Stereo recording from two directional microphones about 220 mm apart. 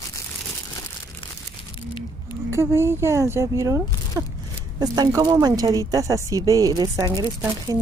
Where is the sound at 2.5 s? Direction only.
10° right (ahead or behind).